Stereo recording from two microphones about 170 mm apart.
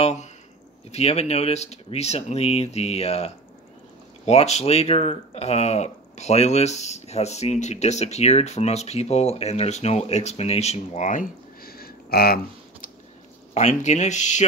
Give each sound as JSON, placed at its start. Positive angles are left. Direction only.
{"t": 0.0, "sound": "speech", "side_deg": 40}
{"t": 13.6, "sound": "speech", "side_deg": 45}